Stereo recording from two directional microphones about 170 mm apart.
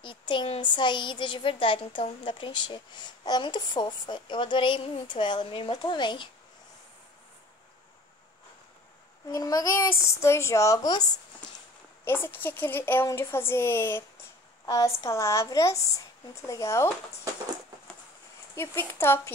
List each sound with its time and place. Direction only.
0.0 s a woman's voice: 30° left (ahead or behind)
9.3 s a woman's voice: 20° left (ahead or behind)
18.5 s a woman's voice: 15° left (ahead or behind)